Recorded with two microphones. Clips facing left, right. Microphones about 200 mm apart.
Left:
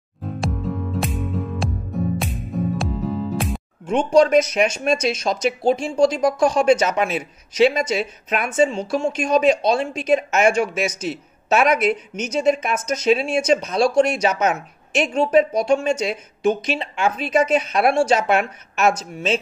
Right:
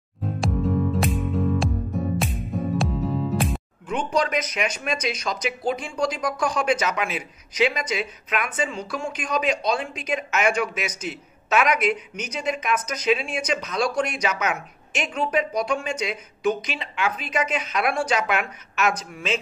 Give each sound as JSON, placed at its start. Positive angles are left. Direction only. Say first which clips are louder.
{"t": 0.4, "sound": "music", "louder": "right 3 dB", "side_deg": 0}
{"t": 3.8, "sound": "a woman's voice", "louder": "left 9 dB", "side_deg": 25}